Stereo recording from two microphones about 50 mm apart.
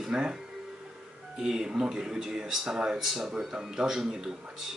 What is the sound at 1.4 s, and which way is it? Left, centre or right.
Speech, centre.